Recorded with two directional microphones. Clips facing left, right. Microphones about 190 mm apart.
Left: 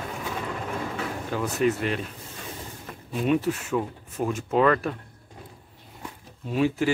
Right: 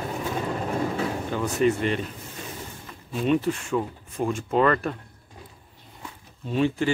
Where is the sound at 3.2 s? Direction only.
5° left (ahead or behind).